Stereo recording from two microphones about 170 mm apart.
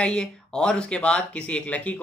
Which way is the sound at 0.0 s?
5° left (ahead or behind).